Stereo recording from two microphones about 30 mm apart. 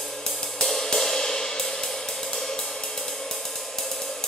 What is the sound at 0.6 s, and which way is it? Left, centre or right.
Music, centre.